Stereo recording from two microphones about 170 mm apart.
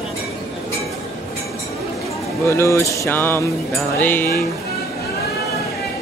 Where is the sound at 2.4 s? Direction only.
15° left (ahead or behind).